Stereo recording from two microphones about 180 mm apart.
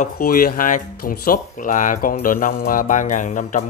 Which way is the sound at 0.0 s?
55° left (ahead or behind).